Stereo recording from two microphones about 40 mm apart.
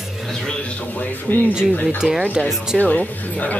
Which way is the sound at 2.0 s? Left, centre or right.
Centre.